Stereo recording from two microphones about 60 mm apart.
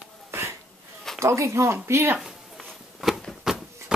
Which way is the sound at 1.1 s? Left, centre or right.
Right.